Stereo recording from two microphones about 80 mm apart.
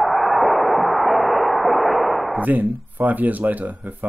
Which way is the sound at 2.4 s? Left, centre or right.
Right.